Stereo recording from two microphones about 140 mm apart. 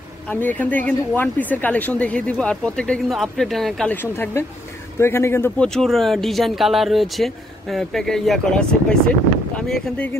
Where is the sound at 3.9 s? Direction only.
15° left (ahead or behind).